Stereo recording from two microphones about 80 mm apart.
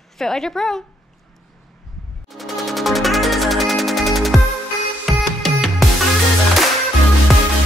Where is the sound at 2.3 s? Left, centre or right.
Centre.